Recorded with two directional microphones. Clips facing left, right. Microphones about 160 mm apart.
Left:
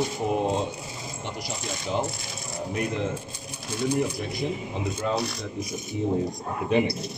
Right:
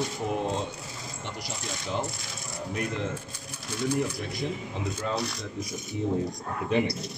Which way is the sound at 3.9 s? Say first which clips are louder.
Left 2 dB; 15° left (ahead or behind).